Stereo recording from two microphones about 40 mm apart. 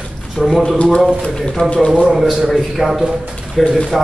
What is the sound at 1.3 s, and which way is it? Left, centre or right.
Speech, centre.